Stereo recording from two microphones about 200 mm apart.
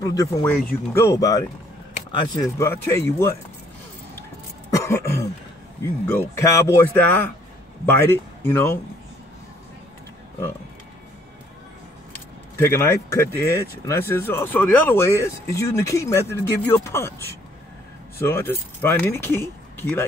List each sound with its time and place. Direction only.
0.0 s speech: 15° left (ahead or behind)
4.6 s throat clearing: 15° left (ahead or behind)
6.0 s speech: 10° left (ahead or behind)
12.1 s speech: 10° left (ahead or behind)